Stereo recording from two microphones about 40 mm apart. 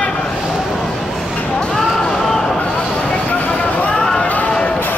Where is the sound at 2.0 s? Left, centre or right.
Centre.